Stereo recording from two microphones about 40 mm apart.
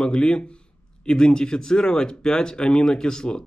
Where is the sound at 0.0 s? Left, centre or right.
Left.